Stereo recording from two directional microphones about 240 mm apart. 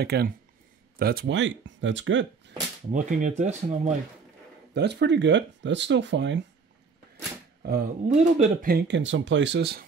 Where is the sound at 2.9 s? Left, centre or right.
Right.